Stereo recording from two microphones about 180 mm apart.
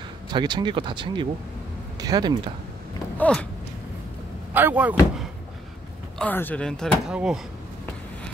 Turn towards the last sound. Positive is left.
turn(degrees=-5)  # may be behind; listen again after turning